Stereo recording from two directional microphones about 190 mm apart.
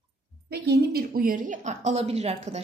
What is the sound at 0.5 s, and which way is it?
Speech, 55° right (ahead or behind).